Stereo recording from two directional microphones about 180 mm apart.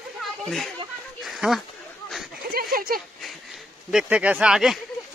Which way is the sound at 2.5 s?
55° right (ahead or behind).